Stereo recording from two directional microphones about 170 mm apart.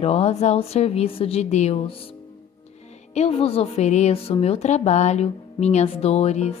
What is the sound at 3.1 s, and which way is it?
A woman's voice, 35° left (ahead or behind).